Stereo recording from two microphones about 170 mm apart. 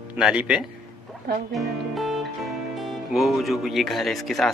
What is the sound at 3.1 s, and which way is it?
A man's voice, centre (ahead or behind).